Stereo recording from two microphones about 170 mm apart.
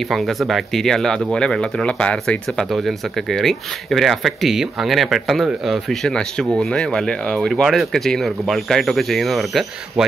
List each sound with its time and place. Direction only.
0.1 s speech: centre (ahead or behind)